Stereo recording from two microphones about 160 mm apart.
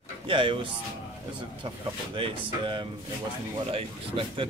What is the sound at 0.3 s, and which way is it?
Speech, 30° right (ahead or behind).